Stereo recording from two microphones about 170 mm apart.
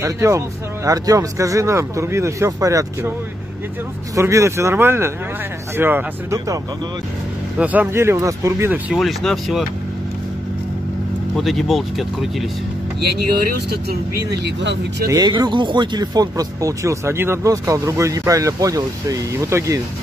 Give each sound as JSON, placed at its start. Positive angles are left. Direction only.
{"t": 0.0, "sound": "speech", "side_deg": -15}
{"t": 7.5, "sound": "speech", "side_deg": -10}
{"t": 11.3, "sound": "speech", "side_deg": 0}
{"t": 13.4, "sound": "speech", "side_deg": -65}
{"t": 15.0, "sound": "speech", "side_deg": -25}